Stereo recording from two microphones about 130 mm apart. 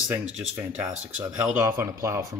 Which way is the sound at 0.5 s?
15° right (ahead or behind).